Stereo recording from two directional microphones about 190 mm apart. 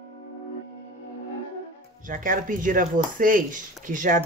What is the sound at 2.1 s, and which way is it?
Speech, 45° right (ahead or behind).